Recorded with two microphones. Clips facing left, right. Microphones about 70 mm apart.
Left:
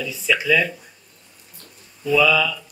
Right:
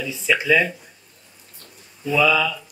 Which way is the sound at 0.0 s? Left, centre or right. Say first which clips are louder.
Even; right.